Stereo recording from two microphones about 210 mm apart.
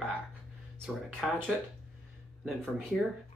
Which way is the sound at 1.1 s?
Centre (ahead or behind).